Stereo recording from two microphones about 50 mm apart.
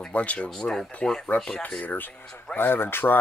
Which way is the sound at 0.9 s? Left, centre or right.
Centre.